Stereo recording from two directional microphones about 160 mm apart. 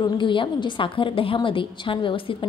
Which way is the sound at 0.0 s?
30° left (ahead or behind).